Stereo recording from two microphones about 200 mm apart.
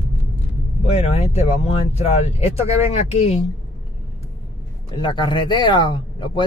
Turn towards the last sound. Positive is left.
turn(degrees=25)  # may be behind; listen again after turning